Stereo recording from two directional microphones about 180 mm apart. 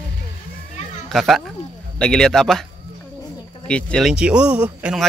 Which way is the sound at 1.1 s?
Centre (ahead or behind).